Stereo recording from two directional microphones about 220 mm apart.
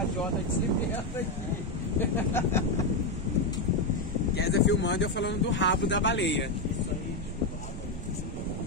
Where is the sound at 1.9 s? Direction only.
10° left (ahead or behind).